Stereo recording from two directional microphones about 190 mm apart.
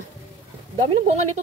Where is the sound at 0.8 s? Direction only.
30° right (ahead or behind).